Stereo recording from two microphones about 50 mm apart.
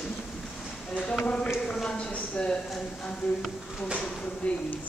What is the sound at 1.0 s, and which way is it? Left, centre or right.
A woman's voice, left.